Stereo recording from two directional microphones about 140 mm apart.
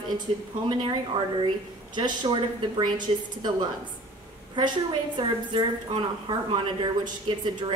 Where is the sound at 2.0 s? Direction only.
35° right (ahead or behind).